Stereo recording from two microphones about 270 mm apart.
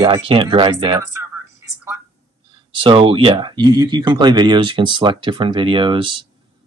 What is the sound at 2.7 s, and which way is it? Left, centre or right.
Speech, centre.